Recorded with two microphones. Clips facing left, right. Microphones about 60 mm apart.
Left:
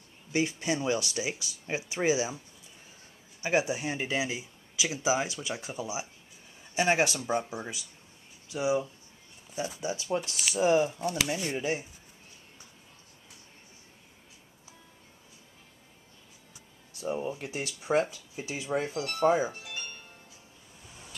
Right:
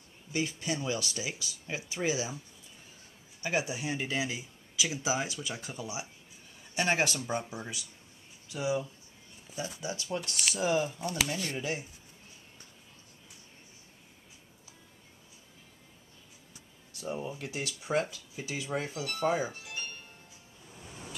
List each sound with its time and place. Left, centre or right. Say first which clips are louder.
0.3 s speech: left 4 dB; left
3.4 s speech: left 4 dB; centre
6.7 s speech: left 3 dB; centre; by 10.2 s left
10.2 s speech: left 1 dB; centre
10.6 s speech: left 6 dB; left
17.0 s speech: left 4 dB; left